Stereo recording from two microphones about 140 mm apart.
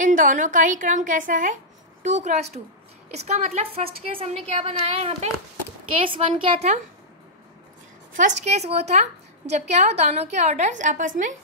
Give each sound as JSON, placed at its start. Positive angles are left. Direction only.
{"t": 0.0, "sound": "a woman's voice", "side_deg": -70}
{"t": 2.0, "sound": "a woman's voice", "side_deg": -55}
{"t": 8.2, "sound": "a woman's voice", "side_deg": -60}